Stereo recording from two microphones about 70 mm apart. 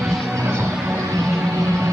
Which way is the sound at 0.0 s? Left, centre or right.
Centre.